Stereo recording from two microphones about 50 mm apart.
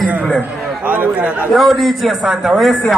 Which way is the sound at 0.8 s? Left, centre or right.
Right.